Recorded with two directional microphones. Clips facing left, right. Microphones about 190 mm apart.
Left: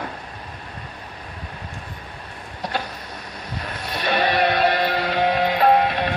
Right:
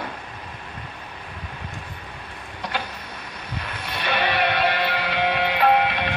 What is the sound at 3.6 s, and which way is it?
Music, 40° left (ahead or behind).